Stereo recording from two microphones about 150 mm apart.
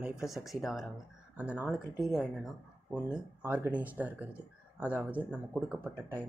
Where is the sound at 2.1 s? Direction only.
5° right (ahead or behind).